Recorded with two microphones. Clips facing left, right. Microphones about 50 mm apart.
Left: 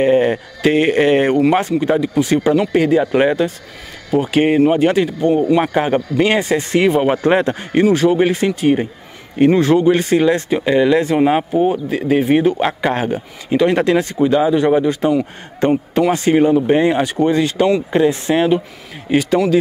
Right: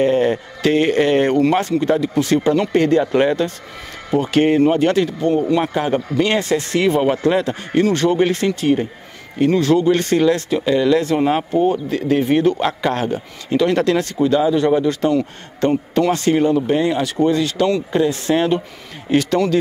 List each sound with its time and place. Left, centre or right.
0.0 s speech: centre
5.7 s speech: left
7.1 s speech: left
7.9 s speech: centre